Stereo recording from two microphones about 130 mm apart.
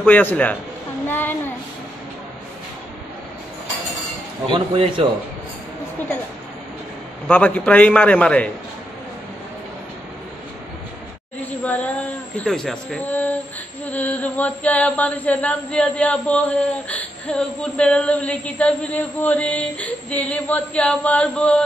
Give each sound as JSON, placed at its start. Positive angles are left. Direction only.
{"t": 0.0, "sound": "speech", "side_deg": 15}
{"t": 1.0, "sound": "child singing", "side_deg": 15}
{"t": 4.5, "sound": "speech", "side_deg": -40}
{"t": 7.2, "sound": "speech", "side_deg": 10}
{"t": 11.6, "sound": "a sound", "side_deg": 10}
{"t": 12.4, "sound": "speech", "side_deg": 5}